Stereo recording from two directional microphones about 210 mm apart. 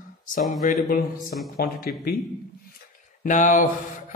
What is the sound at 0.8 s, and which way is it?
Speech, 40° left (ahead or behind).